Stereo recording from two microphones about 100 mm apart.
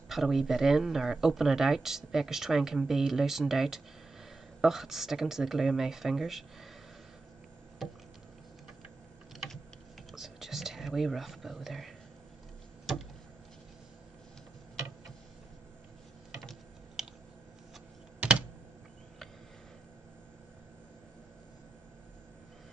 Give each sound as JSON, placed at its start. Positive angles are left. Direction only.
{"t": 0.1, "sound": "speech", "side_deg": -5}
{"t": 7.8, "sound": "a sound", "side_deg": 0}
{"t": 9.3, "sound": "typing", "side_deg": 0}
{"t": 10.1, "sound": "whispering", "side_deg": -5}
{"t": 16.3, "sound": "typing", "side_deg": 0}
{"t": 18.2, "sound": "computer keyboard", "side_deg": -15}